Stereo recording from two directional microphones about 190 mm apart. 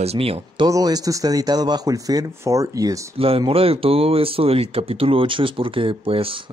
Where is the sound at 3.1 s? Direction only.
30° right (ahead or behind).